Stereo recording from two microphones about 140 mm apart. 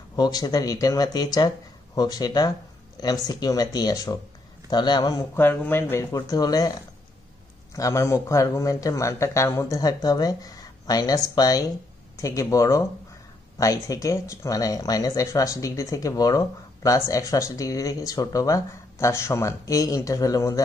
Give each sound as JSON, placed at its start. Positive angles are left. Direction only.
{"t": 0.1, "sound": "a man's voice", "side_deg": 30}
{"t": 5.3, "sound": "speech", "side_deg": 15}
{"t": 6.1, "sound": "speech", "side_deg": 25}
{"t": 7.7, "sound": "speech", "side_deg": 20}